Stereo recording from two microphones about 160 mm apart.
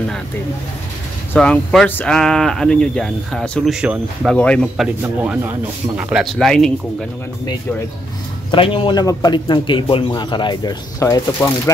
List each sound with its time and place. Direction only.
1.3 s speech: 5° left (ahead or behind)
3.8 s speech: 5° right (ahead or behind)
4.3 s speech: 5° left (ahead or behind)
5.0 s speech: 10° right (ahead or behind)
8.5 s a man's voice: 35° left (ahead or behind); by 11.7 s 15° left (ahead or behind)